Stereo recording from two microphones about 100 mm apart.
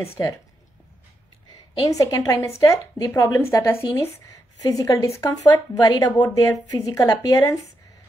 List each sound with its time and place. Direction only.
0.0 s a woman's voice: 30° left (ahead or behind)
1.5 s a woman's voice: 40° left (ahead or behind)